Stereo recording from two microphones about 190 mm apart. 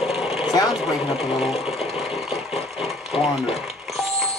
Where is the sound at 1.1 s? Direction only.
30° left (ahead or behind).